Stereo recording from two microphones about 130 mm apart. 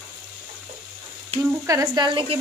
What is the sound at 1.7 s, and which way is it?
Speech, 30° right (ahead or behind).